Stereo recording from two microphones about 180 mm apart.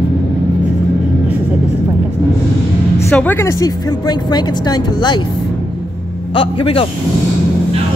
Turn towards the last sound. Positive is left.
turn(degrees=30)  # may be behind; listen again after turning